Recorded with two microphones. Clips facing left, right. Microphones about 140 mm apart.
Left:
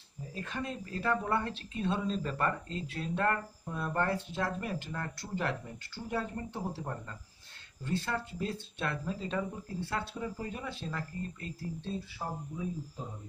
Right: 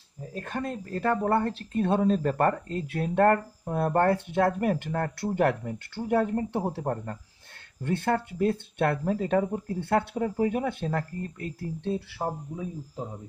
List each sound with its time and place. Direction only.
0.3 s speech: 50° right (ahead or behind); by 13.0 s 75° right (ahead or behind)